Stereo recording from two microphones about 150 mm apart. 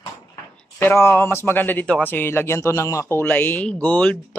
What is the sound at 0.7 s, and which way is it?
A man's voice, 15° left (ahead or behind).